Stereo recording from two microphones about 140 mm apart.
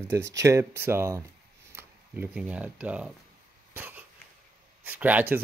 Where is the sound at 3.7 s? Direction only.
15° right (ahead or behind).